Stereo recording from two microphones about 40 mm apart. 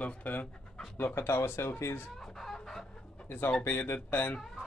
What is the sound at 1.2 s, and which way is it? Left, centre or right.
Speech, left.